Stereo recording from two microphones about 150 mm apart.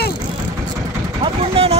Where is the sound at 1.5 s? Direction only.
40° right (ahead or behind).